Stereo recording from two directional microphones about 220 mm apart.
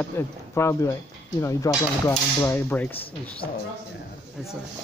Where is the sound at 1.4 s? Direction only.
15° left (ahead or behind).